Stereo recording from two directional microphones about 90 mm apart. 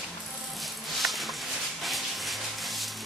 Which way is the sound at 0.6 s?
Centre (ahead or behind).